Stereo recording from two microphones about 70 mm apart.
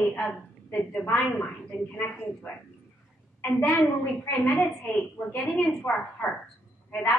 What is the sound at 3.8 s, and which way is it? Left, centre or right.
A woman's voice, left.